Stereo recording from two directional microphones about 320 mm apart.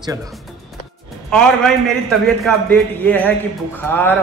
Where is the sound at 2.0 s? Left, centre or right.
Centre.